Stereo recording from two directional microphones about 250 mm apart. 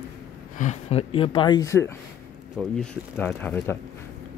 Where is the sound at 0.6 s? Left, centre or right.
Left; by 3.7 s centre.